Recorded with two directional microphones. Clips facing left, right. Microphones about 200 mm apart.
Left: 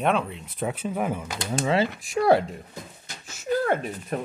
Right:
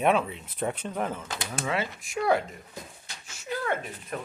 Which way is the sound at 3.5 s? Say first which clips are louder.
Left 7 dB; 40° left (ahead or behind).